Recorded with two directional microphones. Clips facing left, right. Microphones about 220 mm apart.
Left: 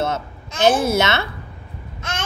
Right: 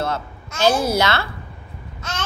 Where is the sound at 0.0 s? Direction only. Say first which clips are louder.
Left 2 dB; 20° left (ahead or behind).